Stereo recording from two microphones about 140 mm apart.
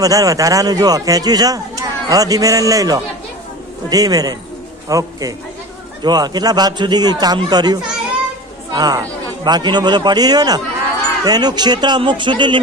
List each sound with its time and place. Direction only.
0.0 s a man's voice: 25° right (ahead or behind)